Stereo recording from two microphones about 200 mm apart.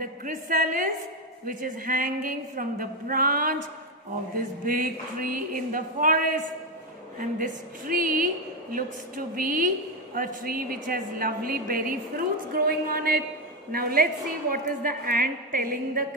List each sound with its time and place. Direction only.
0.0 s a woman's voice: 40° right (ahead or behind)
4.6 s a woman's voice: 45° right (ahead or behind)